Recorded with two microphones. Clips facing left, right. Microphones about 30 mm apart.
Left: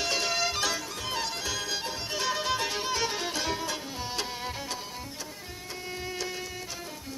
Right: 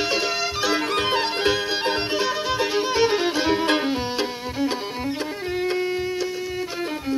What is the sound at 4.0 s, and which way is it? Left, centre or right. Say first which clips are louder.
Music: right 9 dB; right.